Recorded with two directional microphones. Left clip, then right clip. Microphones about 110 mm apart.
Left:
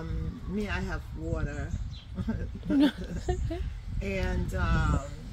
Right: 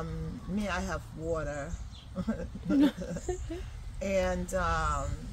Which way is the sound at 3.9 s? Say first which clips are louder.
Right 5 dB; 30° right (ahead or behind).